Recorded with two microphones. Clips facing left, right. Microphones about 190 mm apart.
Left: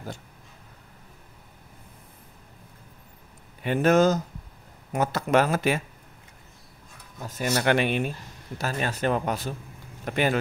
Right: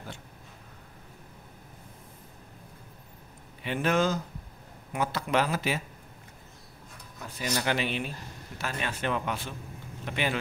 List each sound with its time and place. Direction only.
3.6 s speech: 45° left (ahead or behind)
7.2 s speech: 45° left (ahead or behind)
8.5 s speech: 40° left (ahead or behind)